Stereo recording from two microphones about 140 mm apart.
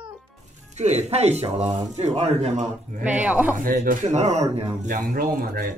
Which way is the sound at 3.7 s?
65° right (ahead or behind).